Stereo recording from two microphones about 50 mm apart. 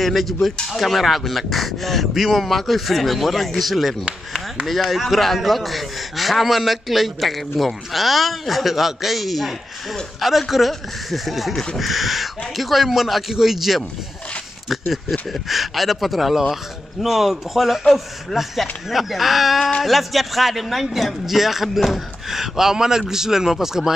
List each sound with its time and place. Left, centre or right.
0.0 s a man's voice: centre
4.0 s speech: centre
4.8 s a man's voice: centre